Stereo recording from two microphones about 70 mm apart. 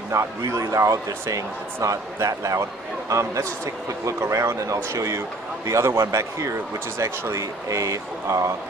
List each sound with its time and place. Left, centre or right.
0.1 s a man's voice: right